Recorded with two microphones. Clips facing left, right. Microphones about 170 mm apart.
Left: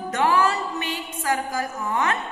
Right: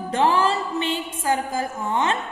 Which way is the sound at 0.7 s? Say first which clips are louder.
Right 5 dB; 25° right (ahead or behind).